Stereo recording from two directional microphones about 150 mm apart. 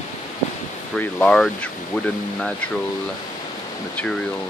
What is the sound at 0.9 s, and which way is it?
Speech, 10° left (ahead or behind).